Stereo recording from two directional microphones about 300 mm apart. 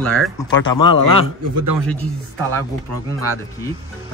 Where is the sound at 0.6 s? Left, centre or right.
Centre.